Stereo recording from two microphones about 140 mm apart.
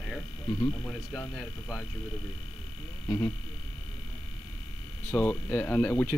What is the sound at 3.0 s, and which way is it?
Speech, 15° left (ahead or behind).